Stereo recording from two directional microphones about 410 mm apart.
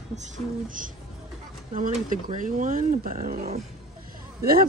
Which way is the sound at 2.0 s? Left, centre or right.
Centre.